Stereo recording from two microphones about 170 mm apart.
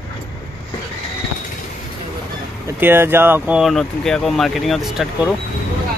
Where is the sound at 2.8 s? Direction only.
15° right (ahead or behind).